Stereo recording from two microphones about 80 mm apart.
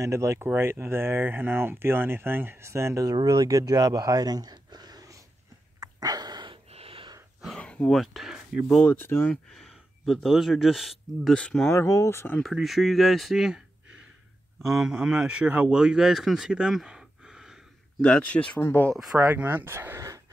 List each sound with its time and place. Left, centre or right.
0.0 s speech: right
3.2 s speech: right
5.8 s a sound: right
7.4 s a sound: centre
7.9 s speech: centre
8.8 s speech: left
9.2 s speech: centre
11.3 s speech: centre
11.7 s speech: left
12.5 s speech: centre
14.6 s speech: centre
18.0 s speech: centre
18.6 s speech: left
19.1 s speech: right